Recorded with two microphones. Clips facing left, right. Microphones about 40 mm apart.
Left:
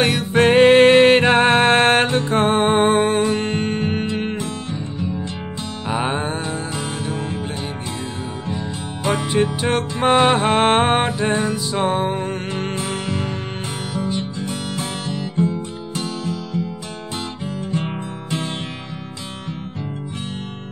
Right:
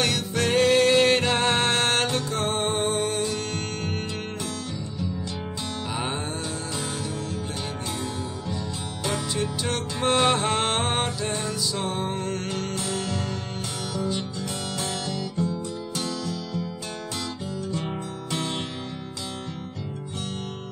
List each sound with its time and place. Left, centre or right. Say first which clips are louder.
0.0 s music: left 9 dB; left
5.9 s music: left 10 dB; left
9.0 s music: left 9 dB; left
17.6 s music: left 6 dB; left